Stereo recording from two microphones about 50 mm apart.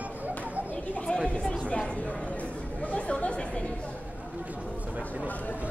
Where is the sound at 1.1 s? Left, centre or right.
Left.